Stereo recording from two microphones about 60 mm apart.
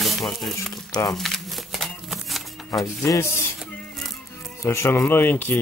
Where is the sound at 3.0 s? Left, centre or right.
Left.